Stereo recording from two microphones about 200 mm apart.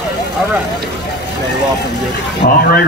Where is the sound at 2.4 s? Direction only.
60° left (ahead or behind).